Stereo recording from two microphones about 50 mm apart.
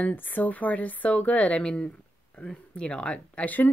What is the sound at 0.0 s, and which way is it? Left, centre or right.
Speech, left.